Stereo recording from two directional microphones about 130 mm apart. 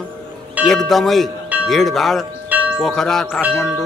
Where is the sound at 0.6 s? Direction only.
Centre (ahead or behind).